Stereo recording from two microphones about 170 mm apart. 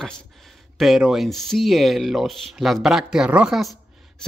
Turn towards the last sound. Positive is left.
turn(degrees=-5)  # may be behind; listen again after turning